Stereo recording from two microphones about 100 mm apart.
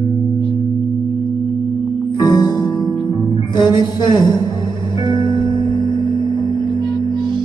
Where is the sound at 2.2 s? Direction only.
45° left (ahead or behind).